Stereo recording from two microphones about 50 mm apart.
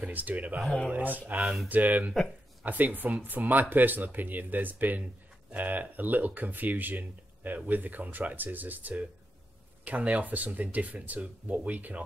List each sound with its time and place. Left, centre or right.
0.0 s speech: right